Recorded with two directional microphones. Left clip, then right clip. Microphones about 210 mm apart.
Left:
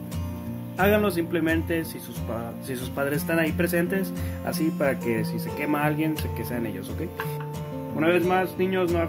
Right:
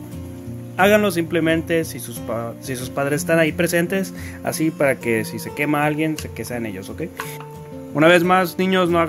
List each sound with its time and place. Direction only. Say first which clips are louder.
0.7 s speech: right 7 dB; 35° right (ahead or behind)
8.0 s speech: right 8 dB; 55° right (ahead or behind)